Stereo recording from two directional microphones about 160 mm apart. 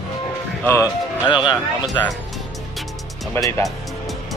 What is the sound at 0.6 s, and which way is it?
Speech, 15° left (ahead or behind).